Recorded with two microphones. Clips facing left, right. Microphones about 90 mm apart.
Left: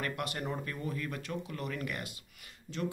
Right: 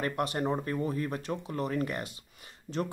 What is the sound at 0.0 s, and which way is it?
Speech, 35° right (ahead or behind).